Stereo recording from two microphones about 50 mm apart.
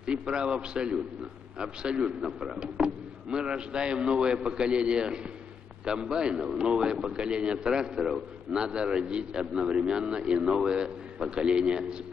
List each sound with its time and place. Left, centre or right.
0.0 s a man's voice: centre